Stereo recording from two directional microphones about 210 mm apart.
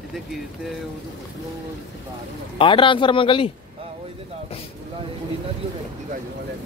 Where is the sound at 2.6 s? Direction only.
25° left (ahead or behind).